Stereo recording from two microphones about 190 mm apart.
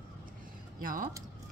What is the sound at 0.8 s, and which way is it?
Speech, 45° right (ahead or behind).